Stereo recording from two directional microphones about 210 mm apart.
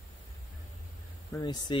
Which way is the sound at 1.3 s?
15° left (ahead or behind).